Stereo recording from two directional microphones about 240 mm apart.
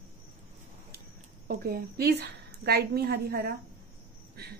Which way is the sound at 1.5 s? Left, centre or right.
Right.